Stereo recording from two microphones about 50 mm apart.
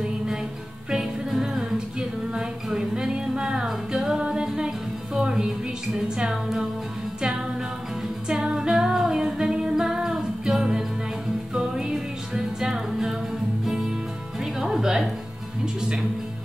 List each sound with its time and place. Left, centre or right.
0.8 s music: centre
8.3 s music: centre
14.4 s music: centre